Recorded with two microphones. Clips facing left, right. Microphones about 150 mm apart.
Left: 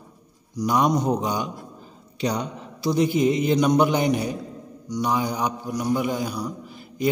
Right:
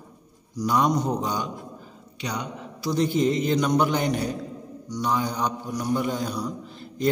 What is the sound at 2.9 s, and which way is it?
A man's voice, 10° left (ahead or behind).